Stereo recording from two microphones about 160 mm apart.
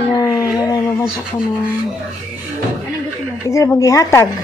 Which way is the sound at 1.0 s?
5° right (ahead or behind).